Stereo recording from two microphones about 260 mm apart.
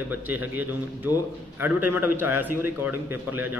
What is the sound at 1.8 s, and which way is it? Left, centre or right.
Speech, right.